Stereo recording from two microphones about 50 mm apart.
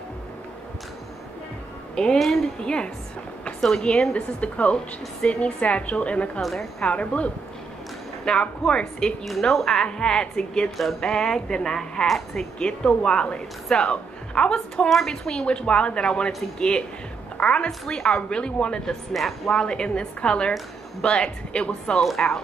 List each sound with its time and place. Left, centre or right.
2.1 s a woman's voice: centre
2.6 s a woman's voice: centre
4.1 s a woman's voice: left
6.4 s a woman's voice: centre
6.9 s a woman's voice: left
8.3 s a woman's voice: left
9.2 s a woman's voice: centre
14.9 s a woman's voice: centre
15.2 s a woman's voice: centre
17.6 s a woman's voice: centre
19.1 s a woman's voice: centre
19.5 s a woman's voice: centre